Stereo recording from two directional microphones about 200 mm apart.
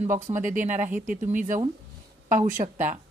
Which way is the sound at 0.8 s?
10° right (ahead or behind).